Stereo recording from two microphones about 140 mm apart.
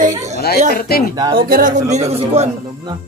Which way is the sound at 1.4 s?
80° right.